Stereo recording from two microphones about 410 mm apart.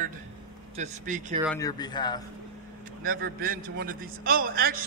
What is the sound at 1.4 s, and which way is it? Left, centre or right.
Speech, centre.